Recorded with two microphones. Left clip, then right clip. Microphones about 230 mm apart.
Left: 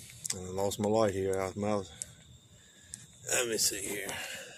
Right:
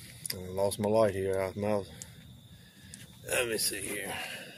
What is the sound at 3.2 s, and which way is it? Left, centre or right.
Speech, centre.